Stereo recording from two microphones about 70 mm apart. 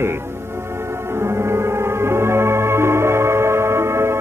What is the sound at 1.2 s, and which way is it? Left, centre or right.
Music, right.